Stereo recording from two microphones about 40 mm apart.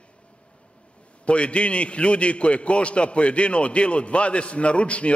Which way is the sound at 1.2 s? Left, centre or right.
Left.